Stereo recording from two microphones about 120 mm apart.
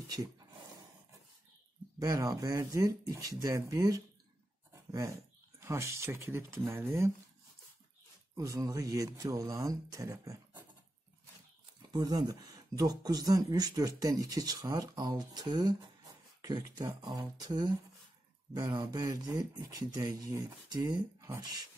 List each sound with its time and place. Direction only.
0.1 s a sound: 35° right (ahead or behind)
2.0 s speech: 30° right (ahead or behind)
5.6 s speech: 25° right (ahead or behind)
8.4 s speech: 25° right (ahead or behind)
11.9 s speech: 35° right (ahead or behind)